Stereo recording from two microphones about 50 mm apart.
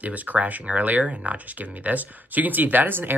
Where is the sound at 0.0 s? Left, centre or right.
Right.